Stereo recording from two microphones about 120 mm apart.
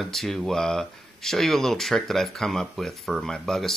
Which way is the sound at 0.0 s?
Centre (ahead or behind).